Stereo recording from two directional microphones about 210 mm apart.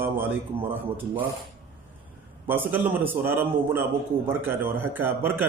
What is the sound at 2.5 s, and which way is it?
A man's voice, 10° right (ahead or behind).